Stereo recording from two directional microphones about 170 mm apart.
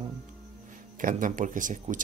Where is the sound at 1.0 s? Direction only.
50° right (ahead or behind).